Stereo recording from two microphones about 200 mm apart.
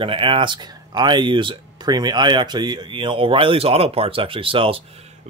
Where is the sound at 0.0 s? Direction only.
25° right (ahead or behind).